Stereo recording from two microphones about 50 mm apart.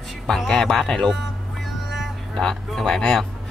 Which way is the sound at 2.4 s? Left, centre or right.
Centre.